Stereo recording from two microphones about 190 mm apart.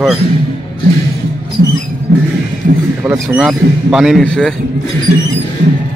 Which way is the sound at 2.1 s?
65° right (ahead or behind).